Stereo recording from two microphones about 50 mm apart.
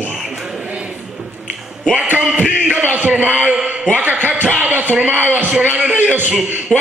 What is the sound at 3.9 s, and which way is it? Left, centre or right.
A man's voice, right.